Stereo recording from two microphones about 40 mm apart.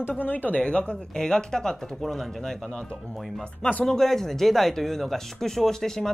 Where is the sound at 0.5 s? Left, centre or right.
Left.